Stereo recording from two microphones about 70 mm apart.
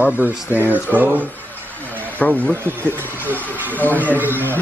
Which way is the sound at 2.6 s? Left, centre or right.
Right.